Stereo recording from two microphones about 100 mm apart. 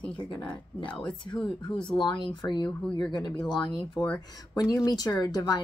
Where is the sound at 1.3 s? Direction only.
10° left (ahead or behind).